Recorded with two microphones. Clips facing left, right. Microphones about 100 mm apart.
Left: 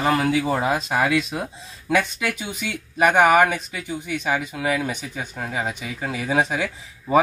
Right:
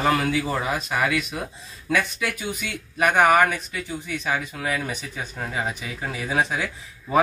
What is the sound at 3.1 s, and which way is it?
Speech, 20° left (ahead or behind).